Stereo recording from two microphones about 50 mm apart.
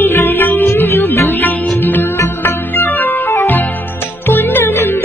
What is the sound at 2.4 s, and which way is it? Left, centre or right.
Organ, left.